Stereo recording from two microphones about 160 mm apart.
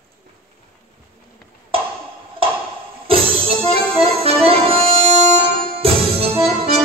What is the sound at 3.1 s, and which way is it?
Music, 35° right (ahead or behind).